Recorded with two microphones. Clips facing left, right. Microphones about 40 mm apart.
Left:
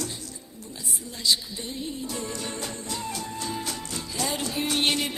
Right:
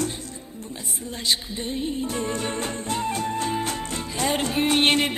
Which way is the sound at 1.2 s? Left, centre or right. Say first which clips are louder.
Right 1 dB; right.